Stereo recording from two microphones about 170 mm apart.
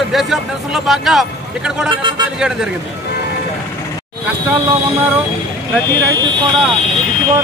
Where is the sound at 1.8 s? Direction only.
25° right (ahead or behind).